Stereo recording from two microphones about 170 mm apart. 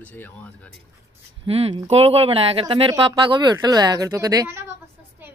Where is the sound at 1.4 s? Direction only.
35° right (ahead or behind).